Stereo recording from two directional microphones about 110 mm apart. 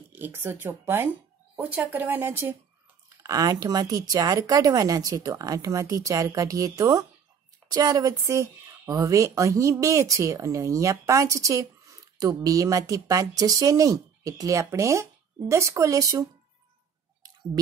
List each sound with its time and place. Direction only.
0.1 s speech: 20° right (ahead or behind)
3.2 s speech: 35° right (ahead or behind)